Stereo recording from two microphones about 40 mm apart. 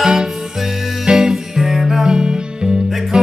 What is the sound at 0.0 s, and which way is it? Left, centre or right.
Music, centre.